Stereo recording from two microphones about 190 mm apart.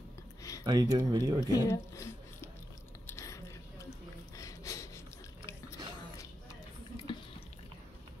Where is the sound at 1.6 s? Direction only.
15° left (ahead or behind).